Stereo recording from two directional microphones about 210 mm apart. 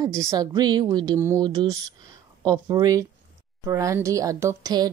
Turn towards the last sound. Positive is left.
turn(degrees=-15)  # may be behind; listen again after turning